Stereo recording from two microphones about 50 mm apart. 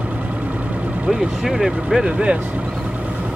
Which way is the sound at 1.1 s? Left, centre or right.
Centre.